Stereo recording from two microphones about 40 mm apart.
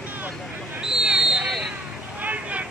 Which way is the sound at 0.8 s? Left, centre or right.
Centre.